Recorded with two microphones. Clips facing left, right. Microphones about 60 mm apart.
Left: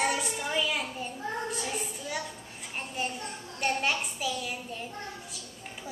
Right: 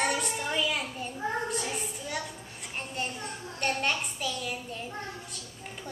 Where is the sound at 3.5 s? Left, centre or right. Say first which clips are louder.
Left 1 dB; centre.